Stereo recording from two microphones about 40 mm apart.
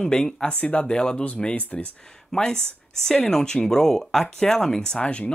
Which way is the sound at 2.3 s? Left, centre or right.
Centre.